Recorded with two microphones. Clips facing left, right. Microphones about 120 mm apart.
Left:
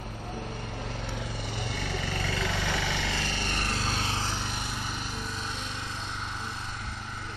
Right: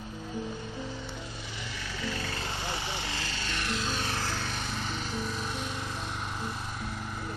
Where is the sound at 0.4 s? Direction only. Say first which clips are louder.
Right 3 dB; 65° left (ahead or behind); by 5.7 s 5° right (ahead or behind).